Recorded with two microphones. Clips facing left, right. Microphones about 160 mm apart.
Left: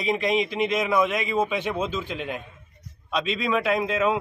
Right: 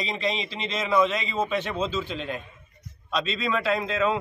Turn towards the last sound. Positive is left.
turn(degrees=10)  # may be behind; listen again after turning